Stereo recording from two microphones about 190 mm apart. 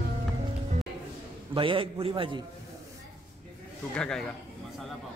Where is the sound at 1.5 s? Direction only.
25° right (ahead or behind).